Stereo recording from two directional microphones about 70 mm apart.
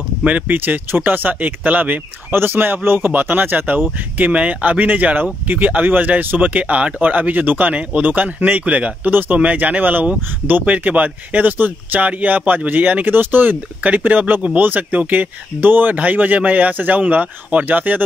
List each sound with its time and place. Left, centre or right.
0.2 s speech: right